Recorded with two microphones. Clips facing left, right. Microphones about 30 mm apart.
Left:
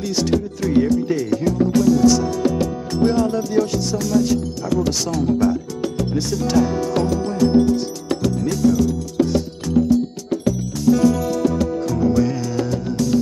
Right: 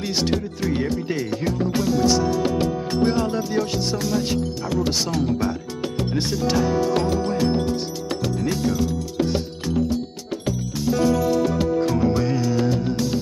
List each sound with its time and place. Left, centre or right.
0.0 s music: right
0.8 s speech: right
1.7 s music: right
7.1 s music: right
12.3 s music: centre